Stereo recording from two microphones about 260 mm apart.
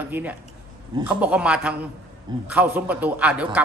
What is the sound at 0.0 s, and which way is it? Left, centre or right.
A man's voice, centre.